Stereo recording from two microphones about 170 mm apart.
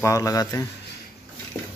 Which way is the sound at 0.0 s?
20° left (ahead or behind).